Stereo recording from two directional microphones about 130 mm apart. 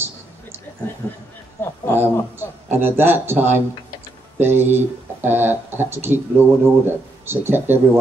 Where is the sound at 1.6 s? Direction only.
20° left (ahead or behind).